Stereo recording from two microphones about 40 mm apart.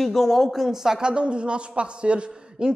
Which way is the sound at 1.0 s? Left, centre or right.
Right.